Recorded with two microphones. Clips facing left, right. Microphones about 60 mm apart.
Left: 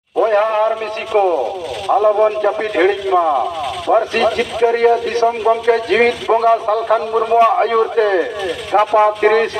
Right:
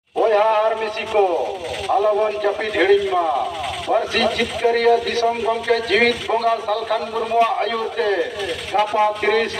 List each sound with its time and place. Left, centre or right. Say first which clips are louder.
0.2 s speech: left 2 dB; left
0.6 s speech: left 2 dB; centre
1.9 s a man's voice: left 5 dB; centre
6.4 s a man's voice: left 6 dB; left